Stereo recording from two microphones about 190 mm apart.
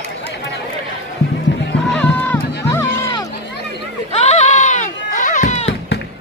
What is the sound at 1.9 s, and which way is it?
Music, 10° left (ahead or behind).